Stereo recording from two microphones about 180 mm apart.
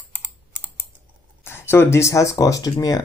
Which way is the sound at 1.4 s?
10° left (ahead or behind).